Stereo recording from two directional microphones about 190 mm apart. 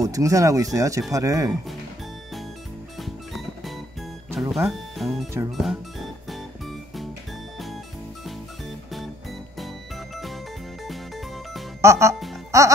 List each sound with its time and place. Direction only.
0.0 s speech: 15° right (ahead or behind)
3.0 s music: centre (ahead or behind)
4.6 s speech: centre (ahead or behind)
11.8 s speech: 15° right (ahead or behind)
12.4 s music: 15° right (ahead or behind)